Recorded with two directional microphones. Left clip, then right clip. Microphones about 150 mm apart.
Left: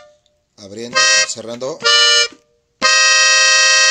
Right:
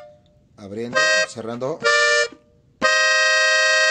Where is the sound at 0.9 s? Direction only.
15° right (ahead or behind).